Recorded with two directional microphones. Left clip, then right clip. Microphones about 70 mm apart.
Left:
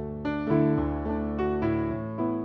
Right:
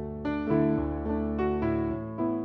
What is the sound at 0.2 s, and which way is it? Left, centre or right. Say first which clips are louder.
Music: left 1 dB; left.